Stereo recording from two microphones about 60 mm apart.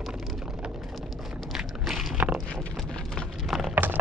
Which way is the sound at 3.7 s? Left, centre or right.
Right.